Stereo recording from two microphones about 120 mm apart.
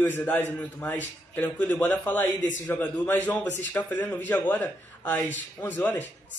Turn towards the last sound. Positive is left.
turn(degrees=15)  # may be behind; listen again after turning